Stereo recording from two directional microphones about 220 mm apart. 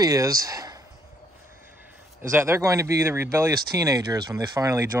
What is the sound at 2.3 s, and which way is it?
Speech, 10° right (ahead or behind).